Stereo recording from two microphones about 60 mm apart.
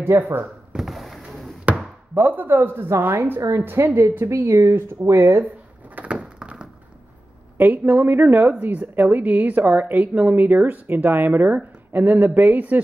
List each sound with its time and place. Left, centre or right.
0.0 s a woman's voice: right
0.7 s a sound: centre
1.7 s chopping: right
2.1 s a woman's voice: right
4.5 s speech: right
5.9 s a sound: right
7.5 s a woman's voice: right